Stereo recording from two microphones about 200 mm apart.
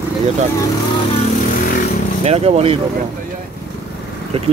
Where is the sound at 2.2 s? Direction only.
30° right (ahead or behind).